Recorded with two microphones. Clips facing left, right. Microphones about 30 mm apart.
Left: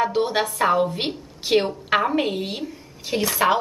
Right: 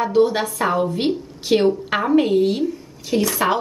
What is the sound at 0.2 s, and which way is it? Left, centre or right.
A woman's voice, centre.